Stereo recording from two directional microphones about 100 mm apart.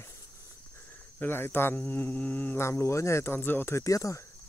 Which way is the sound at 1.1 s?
20° left (ahead or behind).